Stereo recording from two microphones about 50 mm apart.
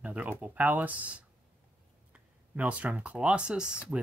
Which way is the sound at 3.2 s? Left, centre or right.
Right.